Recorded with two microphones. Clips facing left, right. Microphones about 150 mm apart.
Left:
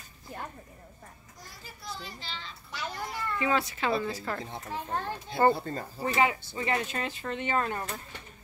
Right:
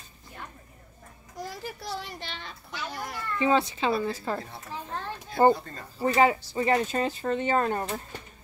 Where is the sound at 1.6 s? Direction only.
90° right; by 2.5 s 60° right (ahead or behind).